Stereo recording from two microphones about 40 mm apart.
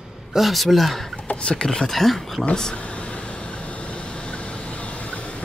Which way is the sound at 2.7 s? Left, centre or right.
Left.